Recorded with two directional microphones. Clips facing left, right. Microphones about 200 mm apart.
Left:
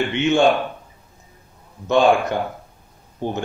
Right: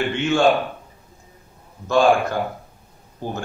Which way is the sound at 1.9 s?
20° left (ahead or behind).